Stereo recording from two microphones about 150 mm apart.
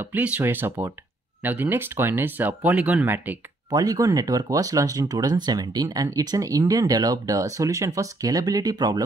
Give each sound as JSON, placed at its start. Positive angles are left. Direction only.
{"t": 0.0, "sound": "speech", "side_deg": -10}
{"t": 3.7, "sound": "speech", "side_deg": -25}